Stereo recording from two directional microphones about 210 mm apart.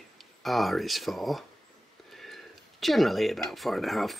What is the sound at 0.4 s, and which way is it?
Speech, centre (ahead or behind).